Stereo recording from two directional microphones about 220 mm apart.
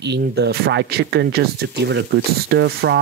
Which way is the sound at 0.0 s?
50° right (ahead or behind).